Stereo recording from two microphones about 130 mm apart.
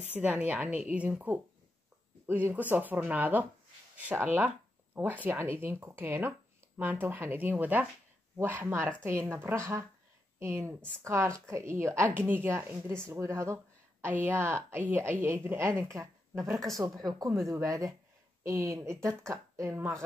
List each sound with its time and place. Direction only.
0.1 s speech: 15° right (ahead or behind)